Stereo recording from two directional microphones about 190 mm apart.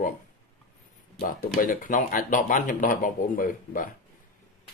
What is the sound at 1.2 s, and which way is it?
Speech, 45° left (ahead or behind).